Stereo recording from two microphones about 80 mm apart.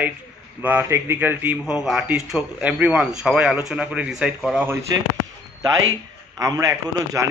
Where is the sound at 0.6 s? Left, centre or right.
Right.